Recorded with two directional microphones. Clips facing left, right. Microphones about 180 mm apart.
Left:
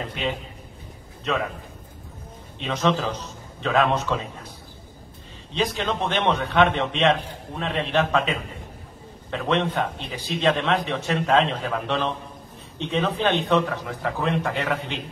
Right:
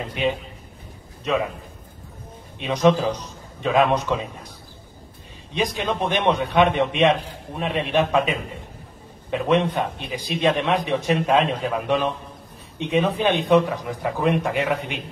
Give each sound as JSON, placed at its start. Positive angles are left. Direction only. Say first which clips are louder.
{"t": 0.1, "sound": "a man's voice", "louder": "right 8 dB", "side_deg": -15}
{"t": 2.6, "sound": "a man's voice", "louder": "right 5 dB", "side_deg": -15}
{"t": 5.5, "sound": "a man's voice", "louder": "right 1 dB", "side_deg": -15}